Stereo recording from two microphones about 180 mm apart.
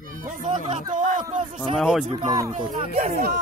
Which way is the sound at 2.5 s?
40° right (ahead or behind).